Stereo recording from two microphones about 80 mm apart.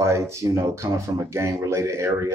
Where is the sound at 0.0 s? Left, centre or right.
Right.